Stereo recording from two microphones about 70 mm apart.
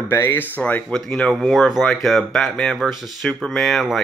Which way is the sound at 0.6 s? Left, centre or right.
Left.